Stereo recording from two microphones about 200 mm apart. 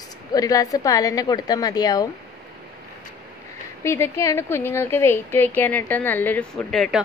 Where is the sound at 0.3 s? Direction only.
15° left (ahead or behind).